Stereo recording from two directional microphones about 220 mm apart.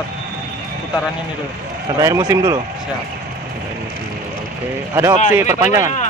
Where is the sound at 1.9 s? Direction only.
15° right (ahead or behind).